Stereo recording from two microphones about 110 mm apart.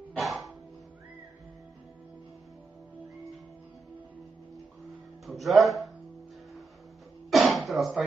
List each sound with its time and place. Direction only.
0.2 s music: centre (ahead or behind)
5.2 s speech: centre (ahead or behind)
7.2 s music: centre (ahead or behind)